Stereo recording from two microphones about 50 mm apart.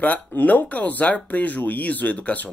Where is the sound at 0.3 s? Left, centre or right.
Left.